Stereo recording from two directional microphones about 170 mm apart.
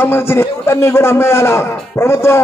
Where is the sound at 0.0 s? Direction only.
15° left (ahead or behind).